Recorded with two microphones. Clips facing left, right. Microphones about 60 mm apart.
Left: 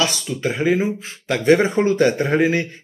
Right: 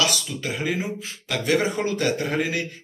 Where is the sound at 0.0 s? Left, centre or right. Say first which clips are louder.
Left 4 dB; left.